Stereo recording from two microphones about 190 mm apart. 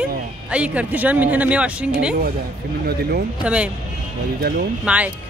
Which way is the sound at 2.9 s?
55° right (ahead or behind).